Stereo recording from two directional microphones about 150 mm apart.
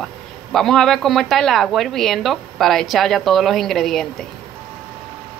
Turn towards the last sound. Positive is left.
turn(degrees=0)  # may be behind; listen again after turning